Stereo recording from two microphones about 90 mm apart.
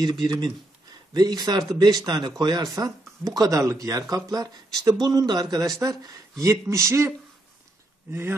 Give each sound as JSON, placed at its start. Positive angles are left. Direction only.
{"t": 0.0, "sound": "speech", "side_deg": -50}
{"t": 5.0, "sound": "speech", "side_deg": -50}